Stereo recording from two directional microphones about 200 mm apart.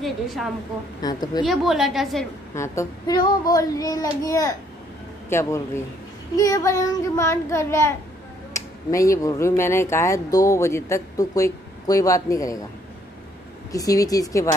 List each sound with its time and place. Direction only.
0.0 s a woman's voice: centre (ahead or behind)
1.0 s a woman's voice: 20° left (ahead or behind)
1.4 s a woman's voice: centre (ahead or behind)
2.5 s speech: 15° left (ahead or behind)
13.7 s speech: 15° left (ahead or behind)